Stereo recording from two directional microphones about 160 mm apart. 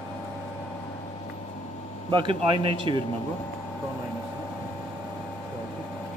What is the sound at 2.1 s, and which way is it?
Speech, 30° right (ahead or behind).